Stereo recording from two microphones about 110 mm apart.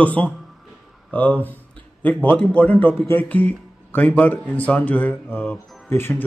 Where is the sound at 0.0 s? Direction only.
15° left (ahead or behind).